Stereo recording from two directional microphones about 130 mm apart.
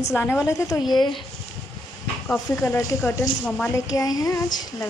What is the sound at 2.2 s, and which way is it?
Speech, 15° left (ahead or behind).